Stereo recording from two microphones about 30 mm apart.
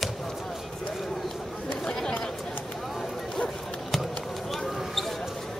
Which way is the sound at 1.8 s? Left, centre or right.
Centre.